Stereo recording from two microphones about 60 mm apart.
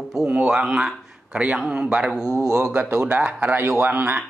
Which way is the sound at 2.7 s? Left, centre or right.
Right.